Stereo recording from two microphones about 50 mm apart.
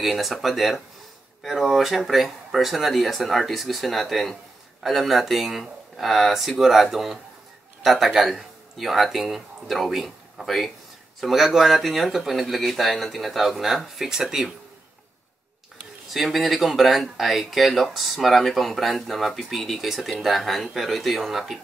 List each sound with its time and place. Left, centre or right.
0.0 s speech: centre
16.1 s speech: centre